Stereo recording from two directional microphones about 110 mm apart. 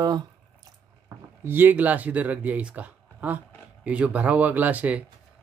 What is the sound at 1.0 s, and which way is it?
Speech, 20° right (ahead or behind).